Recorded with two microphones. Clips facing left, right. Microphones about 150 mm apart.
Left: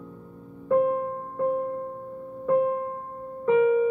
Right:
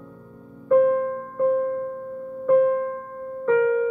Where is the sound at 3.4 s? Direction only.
15° left (ahead or behind).